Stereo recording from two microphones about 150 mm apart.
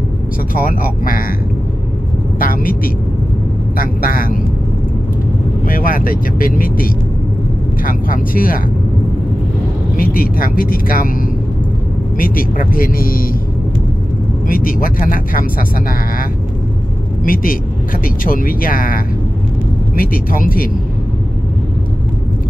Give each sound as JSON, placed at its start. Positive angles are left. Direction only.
{"t": 0.6, "sound": "speech", "side_deg": 70}
{"t": 2.3, "sound": "speech", "side_deg": 70}
{"t": 5.7, "sound": "speech", "side_deg": 70}
{"t": 9.9, "sound": "speech", "side_deg": 75}
{"t": 12.2, "sound": "speech", "side_deg": 70}
{"t": 14.5, "sound": "speech", "side_deg": 70}
{"t": 17.2, "sound": "speech", "side_deg": 65}
{"t": 20.0, "sound": "speech", "side_deg": 70}